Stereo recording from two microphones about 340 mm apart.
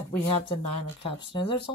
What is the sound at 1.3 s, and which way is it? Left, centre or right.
Speech, centre.